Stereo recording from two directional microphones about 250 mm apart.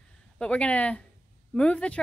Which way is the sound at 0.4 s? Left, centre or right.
Centre.